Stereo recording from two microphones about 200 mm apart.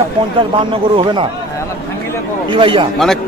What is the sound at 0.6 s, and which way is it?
Speech, 25° right (ahead or behind).